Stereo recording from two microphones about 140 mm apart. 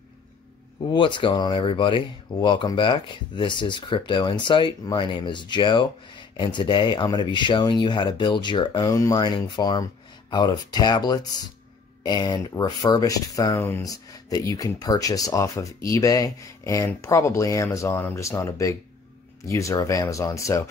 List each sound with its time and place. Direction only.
0.7 s speech: 35° left (ahead or behind); by 13.8 s 15° left (ahead or behind)
13.8 s speech: 25° left (ahead or behind)